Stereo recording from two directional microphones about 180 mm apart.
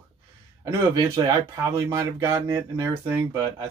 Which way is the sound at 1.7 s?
15° right (ahead or behind).